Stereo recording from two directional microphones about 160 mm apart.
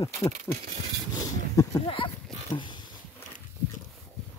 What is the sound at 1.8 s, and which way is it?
Speech, 35° left (ahead or behind).